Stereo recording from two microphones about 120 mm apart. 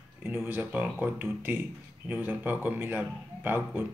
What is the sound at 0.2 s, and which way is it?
Speech, 15° right (ahead or behind).